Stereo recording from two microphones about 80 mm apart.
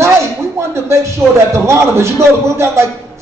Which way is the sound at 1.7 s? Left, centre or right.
Right.